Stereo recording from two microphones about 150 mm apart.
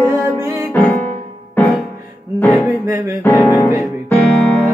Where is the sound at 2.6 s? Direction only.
20° right (ahead or behind).